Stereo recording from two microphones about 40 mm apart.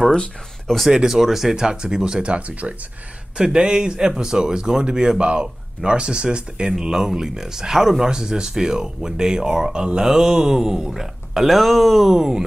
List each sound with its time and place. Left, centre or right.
0.9 s speech: centre
1.6 s speech: centre
2.2 s speech: right
3.3 s speech: right